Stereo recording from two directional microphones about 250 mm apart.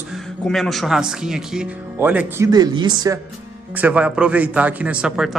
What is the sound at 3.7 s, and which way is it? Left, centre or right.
Speech, centre.